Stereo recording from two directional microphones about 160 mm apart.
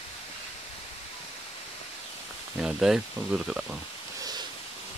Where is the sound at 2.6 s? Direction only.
5° right (ahead or behind).